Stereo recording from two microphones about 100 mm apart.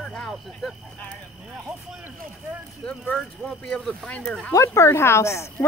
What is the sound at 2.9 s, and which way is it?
Speech, 10° left (ahead or behind).